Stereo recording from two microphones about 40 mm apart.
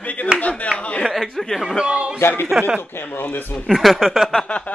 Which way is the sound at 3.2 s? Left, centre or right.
Left.